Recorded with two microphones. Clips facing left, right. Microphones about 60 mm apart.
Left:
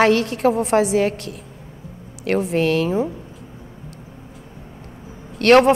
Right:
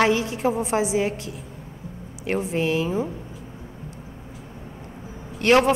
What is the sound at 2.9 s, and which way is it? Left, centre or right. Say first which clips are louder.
Speech: left 4 dB; centre.